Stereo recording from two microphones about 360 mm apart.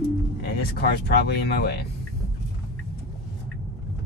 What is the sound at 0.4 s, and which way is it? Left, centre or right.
Speech, left.